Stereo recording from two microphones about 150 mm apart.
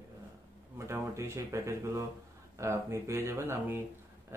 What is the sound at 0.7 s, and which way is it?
Speech, 20° right (ahead or behind).